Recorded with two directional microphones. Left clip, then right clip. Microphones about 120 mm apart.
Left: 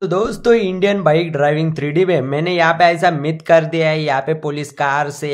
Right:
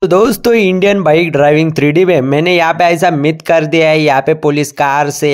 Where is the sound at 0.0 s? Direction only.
90° right.